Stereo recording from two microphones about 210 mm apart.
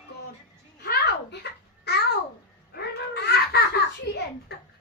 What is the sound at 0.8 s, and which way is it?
Babbling, 50° left (ahead or behind).